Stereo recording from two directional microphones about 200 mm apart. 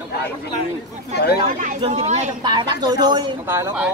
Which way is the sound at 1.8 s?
30° right (ahead or behind).